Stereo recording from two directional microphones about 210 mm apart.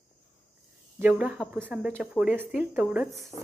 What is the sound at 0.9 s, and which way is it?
Speech, 5° right (ahead or behind).